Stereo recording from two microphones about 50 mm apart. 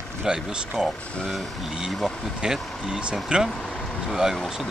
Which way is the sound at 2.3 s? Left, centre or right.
Centre.